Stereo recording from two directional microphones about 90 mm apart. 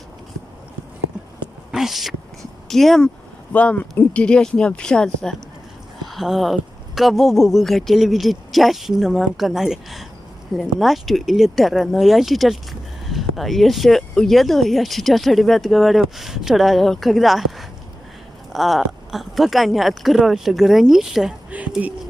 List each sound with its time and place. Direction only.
1.7 s speech: 5° right (ahead or behind)
3.5 s speech: 20° left (ahead or behind); by 21.4 s 5° right (ahead or behind)
21.5 s a sound: 15° right (ahead or behind)